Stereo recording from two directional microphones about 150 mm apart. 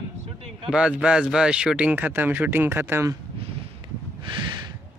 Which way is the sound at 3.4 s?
30° right (ahead or behind).